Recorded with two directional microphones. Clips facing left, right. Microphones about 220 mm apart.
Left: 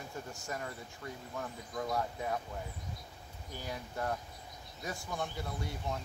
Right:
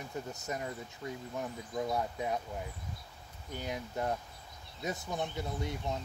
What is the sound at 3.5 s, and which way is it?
Speech, 20° right (ahead or behind).